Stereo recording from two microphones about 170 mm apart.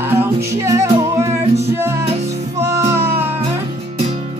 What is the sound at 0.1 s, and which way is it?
Music, 15° right (ahead or behind).